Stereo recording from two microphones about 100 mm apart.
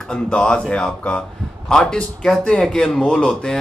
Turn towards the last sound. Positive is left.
turn(degrees=10)  # may be behind; listen again after turning